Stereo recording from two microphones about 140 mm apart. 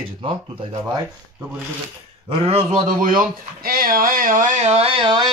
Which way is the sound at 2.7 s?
70° right (ahead or behind).